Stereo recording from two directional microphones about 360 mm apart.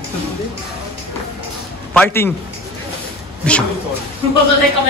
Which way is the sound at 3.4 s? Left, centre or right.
Centre.